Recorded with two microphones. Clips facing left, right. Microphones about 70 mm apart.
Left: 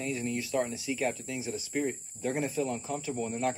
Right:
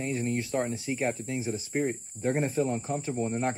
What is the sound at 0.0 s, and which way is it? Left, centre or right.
Speech, right.